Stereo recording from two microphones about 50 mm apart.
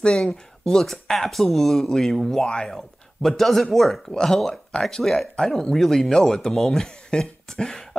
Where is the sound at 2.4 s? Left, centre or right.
Centre.